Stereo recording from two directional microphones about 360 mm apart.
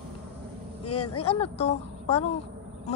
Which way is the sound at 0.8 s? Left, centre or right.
Left.